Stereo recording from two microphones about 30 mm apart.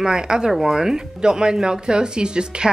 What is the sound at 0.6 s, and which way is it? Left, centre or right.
Speech, centre.